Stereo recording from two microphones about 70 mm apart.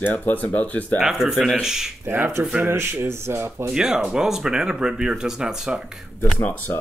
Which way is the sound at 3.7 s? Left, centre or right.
Centre.